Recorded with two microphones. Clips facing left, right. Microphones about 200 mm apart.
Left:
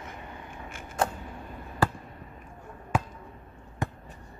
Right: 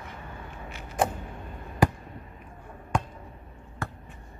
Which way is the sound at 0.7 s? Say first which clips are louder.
Right 1 dB; 50° left (ahead or behind).